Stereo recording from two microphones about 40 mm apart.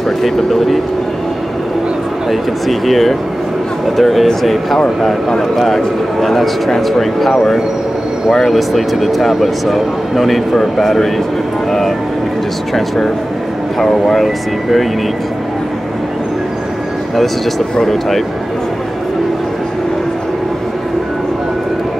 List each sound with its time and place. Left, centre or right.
0.2 s speech: centre
2.7 s speech: centre
5.8 s speech: centre
12.7 s speech: centre
17.7 s speech: centre